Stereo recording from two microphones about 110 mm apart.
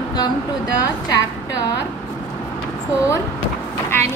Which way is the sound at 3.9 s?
20° left (ahead or behind).